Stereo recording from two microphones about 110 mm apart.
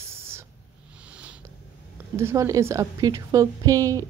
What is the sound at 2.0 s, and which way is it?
A woman's voice, 25° right (ahead or behind).